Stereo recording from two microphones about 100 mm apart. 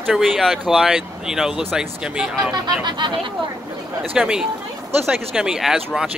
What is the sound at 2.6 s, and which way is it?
Speech, 50° right (ahead or behind).